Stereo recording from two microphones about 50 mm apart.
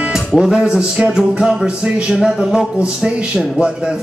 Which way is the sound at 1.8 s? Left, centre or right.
Right.